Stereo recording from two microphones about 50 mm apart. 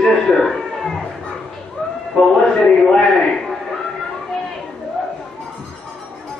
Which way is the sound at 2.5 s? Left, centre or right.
Left.